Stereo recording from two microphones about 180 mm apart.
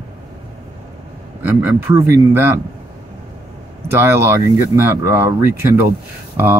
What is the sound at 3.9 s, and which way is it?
Speech, 15° right (ahead or behind).